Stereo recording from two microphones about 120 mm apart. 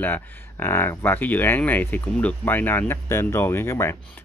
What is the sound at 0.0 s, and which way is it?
Speech, 20° left (ahead or behind).